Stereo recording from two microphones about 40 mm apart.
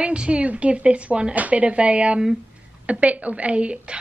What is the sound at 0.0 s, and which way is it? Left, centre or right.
A woman's voice, right.